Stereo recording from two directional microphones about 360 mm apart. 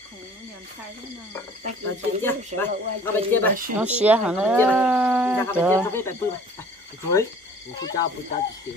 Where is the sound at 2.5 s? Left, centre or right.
Right.